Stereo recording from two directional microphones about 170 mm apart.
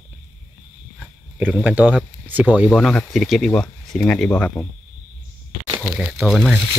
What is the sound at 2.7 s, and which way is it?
Speech, 5° left (ahead or behind).